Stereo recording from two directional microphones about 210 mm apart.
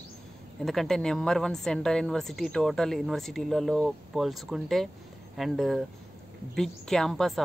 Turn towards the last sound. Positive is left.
turn(degrees=0)  # may be behind; listen again after turning